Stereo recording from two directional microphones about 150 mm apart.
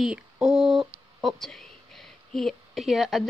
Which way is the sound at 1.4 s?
Centre (ahead or behind).